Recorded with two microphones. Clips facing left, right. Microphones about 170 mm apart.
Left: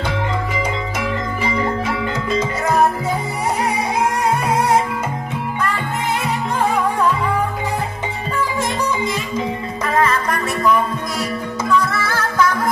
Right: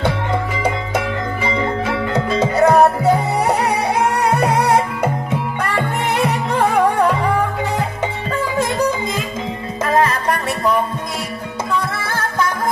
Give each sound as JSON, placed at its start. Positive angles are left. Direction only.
{"t": 2.3, "sound": "music", "side_deg": -65}
{"t": 8.7, "sound": "music", "side_deg": -55}
{"t": 9.9, "sound": "music", "side_deg": -35}
{"t": 11.8, "sound": "music", "side_deg": -25}